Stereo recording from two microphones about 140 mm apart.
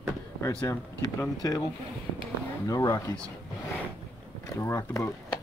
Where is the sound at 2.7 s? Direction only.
25° left (ahead or behind).